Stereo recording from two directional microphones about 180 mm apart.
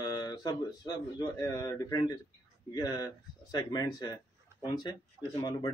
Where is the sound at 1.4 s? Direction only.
15° left (ahead or behind).